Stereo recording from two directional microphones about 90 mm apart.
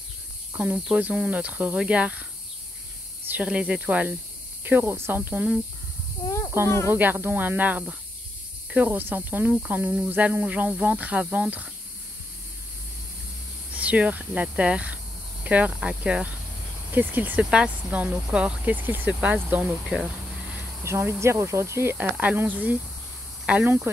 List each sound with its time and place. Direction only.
0.5 s speech: 15° right (ahead or behind)
3.4 s speech: 10° right (ahead or behind)
6.5 s speech: 25° right (ahead or behind)
13.7 s speech: 15° right (ahead or behind)
19.8 s a sound: 5° right (ahead or behind)
20.8 s speech: 30° right (ahead or behind)
21.9 s speech: 15° right (ahead or behind)